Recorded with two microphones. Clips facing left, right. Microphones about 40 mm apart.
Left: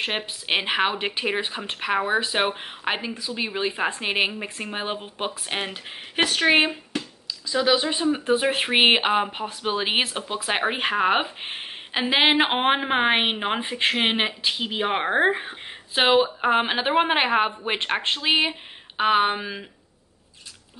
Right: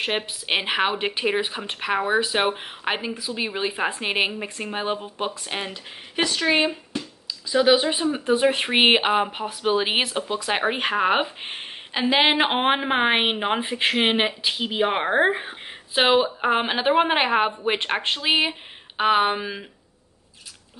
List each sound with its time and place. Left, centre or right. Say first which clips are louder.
0.0 s speech: right 2 dB; centre
6.4 s speech: left 2 dB; left
7.4 s speech: right 3 dB; centre
8.0 s speech: right 1 dB; centre